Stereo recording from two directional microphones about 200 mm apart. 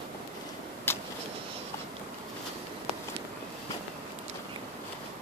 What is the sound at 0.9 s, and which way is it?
Vehicle, 10° left (ahead or behind).